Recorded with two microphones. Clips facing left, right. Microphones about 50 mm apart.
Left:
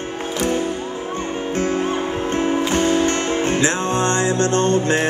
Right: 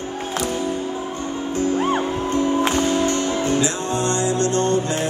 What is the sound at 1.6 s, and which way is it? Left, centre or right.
Music, left.